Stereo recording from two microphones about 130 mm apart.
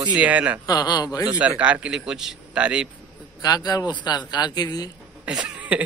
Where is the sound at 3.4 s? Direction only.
30° left (ahead or behind).